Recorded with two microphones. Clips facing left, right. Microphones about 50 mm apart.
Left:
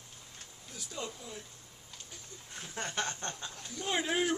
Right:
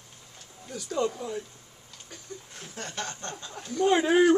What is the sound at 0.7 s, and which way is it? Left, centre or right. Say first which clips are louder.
Speech: right 13 dB; right.